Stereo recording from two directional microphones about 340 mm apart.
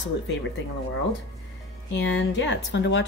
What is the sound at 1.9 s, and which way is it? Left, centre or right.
Speech, left.